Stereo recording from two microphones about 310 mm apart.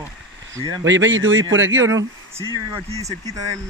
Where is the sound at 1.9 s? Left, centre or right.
Centre.